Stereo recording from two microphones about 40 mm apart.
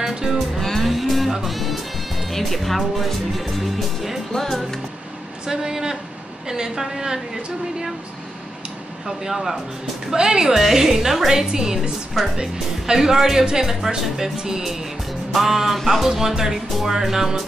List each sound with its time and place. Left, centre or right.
0.0 s music: centre
0.6 s music: centre
2.3 s speech: centre
4.3 s speech: centre
5.5 s speech: centre
9.0 s speech: centre
10.1 s a woman's voice: right
10.4 s speech: centre